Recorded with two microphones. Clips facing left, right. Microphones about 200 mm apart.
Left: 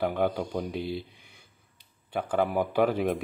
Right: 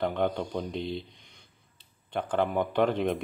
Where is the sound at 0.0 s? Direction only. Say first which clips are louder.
Left 1 dB; 5° left (ahead or behind).